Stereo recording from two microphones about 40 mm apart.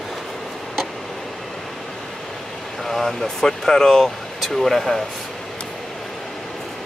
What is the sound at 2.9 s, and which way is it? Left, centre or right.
Speech, centre.